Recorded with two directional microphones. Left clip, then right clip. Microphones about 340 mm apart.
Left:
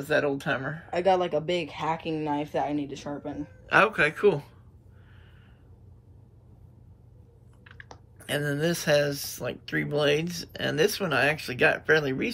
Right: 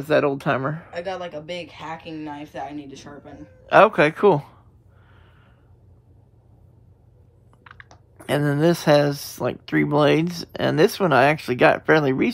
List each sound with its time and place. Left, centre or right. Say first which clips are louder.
0.0 s speech: right 6 dB; centre
0.9 s speech: left 6 dB; centre
3.6 s speech: right 7 dB; centre
7.7 s chewing: right 7 dB; centre
8.2 s speech: right 7 dB; centre